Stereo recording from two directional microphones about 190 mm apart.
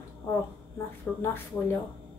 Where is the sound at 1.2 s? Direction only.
10° left (ahead or behind).